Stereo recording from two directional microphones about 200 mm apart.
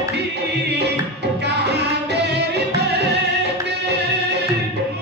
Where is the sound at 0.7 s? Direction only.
55° right (ahead or behind).